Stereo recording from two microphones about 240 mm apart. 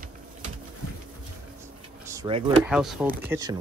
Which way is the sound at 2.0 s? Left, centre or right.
Centre.